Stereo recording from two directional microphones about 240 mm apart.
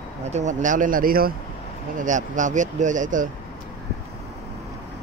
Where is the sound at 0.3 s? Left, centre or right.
Right.